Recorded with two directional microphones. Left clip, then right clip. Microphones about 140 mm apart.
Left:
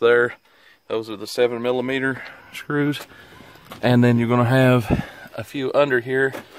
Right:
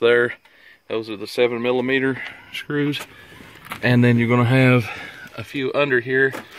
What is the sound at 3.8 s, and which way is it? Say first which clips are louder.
Speech: even; 15° left (ahead or behind).